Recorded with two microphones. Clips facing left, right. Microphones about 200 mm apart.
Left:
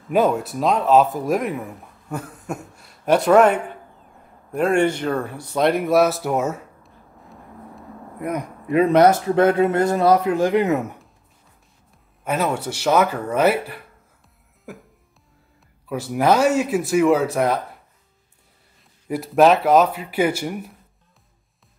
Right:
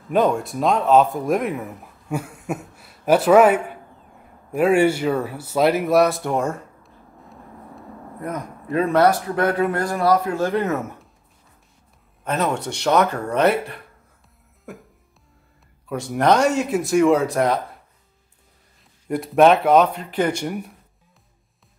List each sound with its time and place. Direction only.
0.1 s speech: 5° left (ahead or behind)
8.2 s speech: 15° left (ahead or behind)
12.3 s speech: 10° left (ahead or behind)
14.7 s music: centre (ahead or behind)
15.9 s speech: 5° left (ahead or behind)
19.0 s speech: centre (ahead or behind)